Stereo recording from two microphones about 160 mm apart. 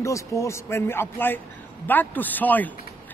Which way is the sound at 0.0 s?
20° left (ahead or behind).